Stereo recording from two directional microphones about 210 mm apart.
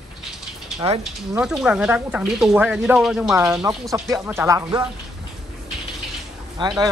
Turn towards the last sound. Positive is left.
turn(degrees=-20)  # may be behind; listen again after turning